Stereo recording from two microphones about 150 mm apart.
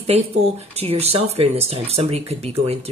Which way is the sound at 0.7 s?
45° right (ahead or behind).